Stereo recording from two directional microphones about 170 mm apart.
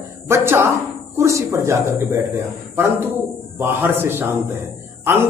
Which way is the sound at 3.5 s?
15° right (ahead or behind).